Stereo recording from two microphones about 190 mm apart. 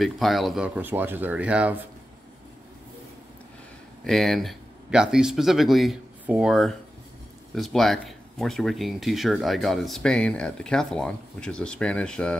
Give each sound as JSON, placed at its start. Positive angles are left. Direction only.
{"t": 0.0, "sound": "speech", "side_deg": 0}
{"t": 4.0, "sound": "speech", "side_deg": 0}